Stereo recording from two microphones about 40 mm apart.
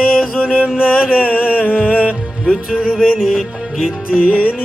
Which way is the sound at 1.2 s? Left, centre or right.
Left.